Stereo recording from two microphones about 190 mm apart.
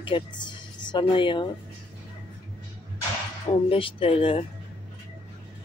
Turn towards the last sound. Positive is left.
turn(degrees=30)  # may be behind; listen again after turning